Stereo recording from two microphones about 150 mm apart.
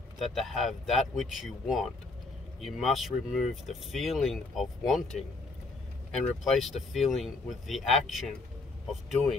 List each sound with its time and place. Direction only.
0.2 s speech: centre (ahead or behind)
6.1 s speech: centre (ahead or behind)